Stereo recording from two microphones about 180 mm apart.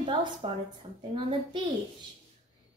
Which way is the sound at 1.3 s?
25° right (ahead or behind).